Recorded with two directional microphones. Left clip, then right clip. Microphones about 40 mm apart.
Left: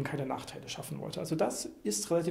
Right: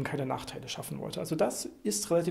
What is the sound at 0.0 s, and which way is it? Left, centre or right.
Speech, right.